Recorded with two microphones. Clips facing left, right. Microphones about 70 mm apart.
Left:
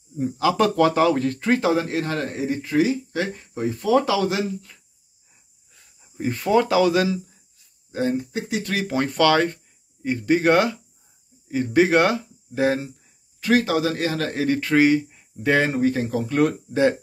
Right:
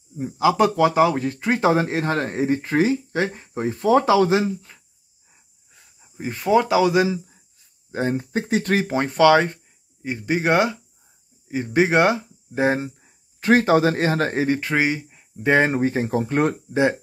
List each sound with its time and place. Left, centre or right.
0.2 s speech: centre
1.6 s speech: right
5.9 s speech: centre
7.9 s speech: right; by 15.2 s centre
15.3 s speech: right